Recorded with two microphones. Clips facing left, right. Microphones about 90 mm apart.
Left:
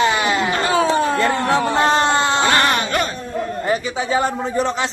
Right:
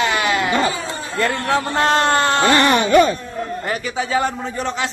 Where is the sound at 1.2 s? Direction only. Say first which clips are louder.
Left 2 dB; 20° left (ahead or behind).